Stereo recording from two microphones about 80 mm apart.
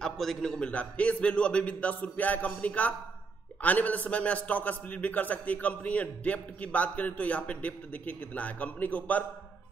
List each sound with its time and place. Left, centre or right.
0.0 s a man's voice: centre